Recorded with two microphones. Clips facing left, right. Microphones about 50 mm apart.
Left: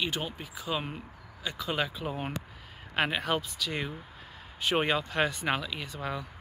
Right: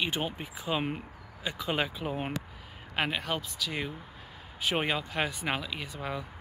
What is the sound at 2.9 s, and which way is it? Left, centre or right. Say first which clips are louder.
Speech: left 2 dB; centre.